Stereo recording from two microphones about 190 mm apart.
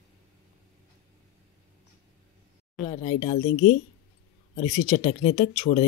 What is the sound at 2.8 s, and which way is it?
Speech, 30° left (ahead or behind).